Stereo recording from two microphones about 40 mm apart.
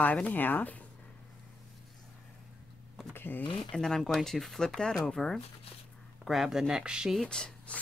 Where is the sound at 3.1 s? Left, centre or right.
Left.